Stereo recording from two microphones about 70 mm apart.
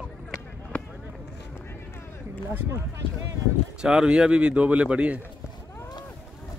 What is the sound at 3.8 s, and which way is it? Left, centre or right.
Speech, centre.